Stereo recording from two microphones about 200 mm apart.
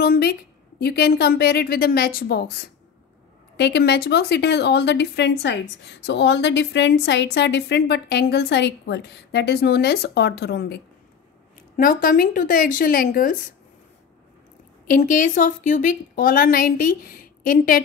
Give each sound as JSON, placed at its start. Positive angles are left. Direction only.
{"t": 0.0, "sound": "a woman's voice", "side_deg": 50}
{"t": 14.9, "sound": "a woman's voice", "side_deg": 40}